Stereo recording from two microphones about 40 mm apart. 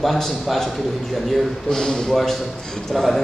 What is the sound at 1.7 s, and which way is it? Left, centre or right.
Speech, centre.